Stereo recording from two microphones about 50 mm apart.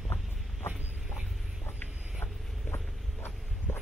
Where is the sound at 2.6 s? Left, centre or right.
Left.